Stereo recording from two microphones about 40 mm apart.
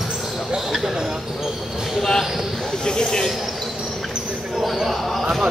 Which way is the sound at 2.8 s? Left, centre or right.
Centre.